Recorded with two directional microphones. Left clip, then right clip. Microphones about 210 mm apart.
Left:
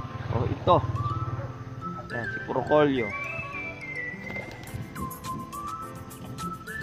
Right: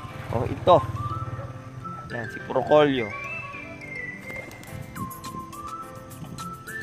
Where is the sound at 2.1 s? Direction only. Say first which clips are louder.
Left 1 dB; 50° right (ahead or behind).